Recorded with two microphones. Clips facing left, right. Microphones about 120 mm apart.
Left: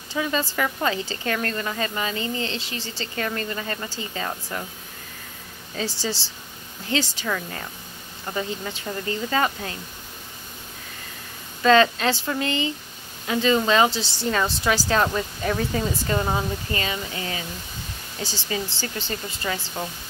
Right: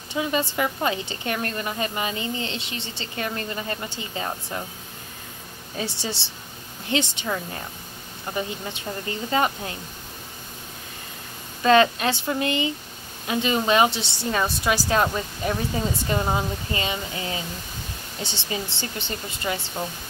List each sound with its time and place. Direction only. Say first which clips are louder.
0.1 s a woman's voice: even; 25° right (ahead or behind)
5.8 s a woman's voice: left 2 dB; 25° right (ahead or behind)
11.6 s a woman's voice: even; 20° right (ahead or behind)